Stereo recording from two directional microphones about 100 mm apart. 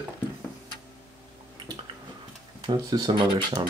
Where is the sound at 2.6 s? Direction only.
45° right (ahead or behind).